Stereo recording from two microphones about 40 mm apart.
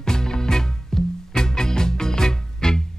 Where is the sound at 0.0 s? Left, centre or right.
Centre.